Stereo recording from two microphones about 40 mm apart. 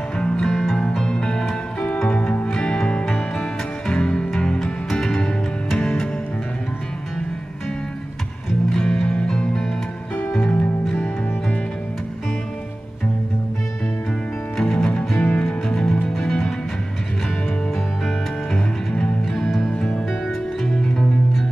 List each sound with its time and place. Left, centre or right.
0.4 s music: centre
8.6 s music: centre
9.0 s music: left
9.3 s music: centre
10.3 s music: left
14.6 s music: centre
18.5 s music: left
19.7 s music: left
20.6 s music: centre